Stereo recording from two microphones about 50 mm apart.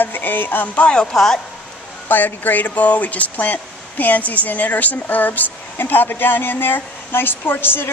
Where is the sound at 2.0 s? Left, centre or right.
Left.